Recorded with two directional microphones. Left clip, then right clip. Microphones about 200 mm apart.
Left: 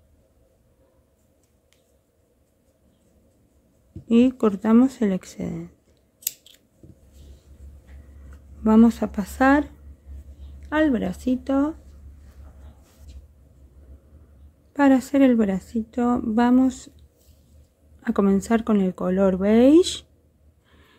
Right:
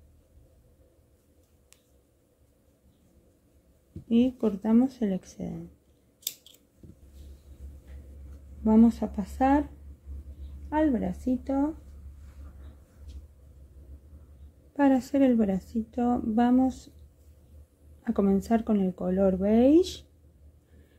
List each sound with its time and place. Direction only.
4.1 s a woman's voice: 30° left (ahead or behind)
8.6 s a woman's voice: 30° left (ahead or behind)
10.7 s a woman's voice: 25° left (ahead or behind)
14.7 s a woman's voice: 20° left (ahead or behind)
18.0 s a woman's voice: 25° left (ahead or behind)